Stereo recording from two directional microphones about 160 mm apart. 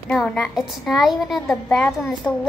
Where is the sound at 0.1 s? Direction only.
Centre (ahead or behind).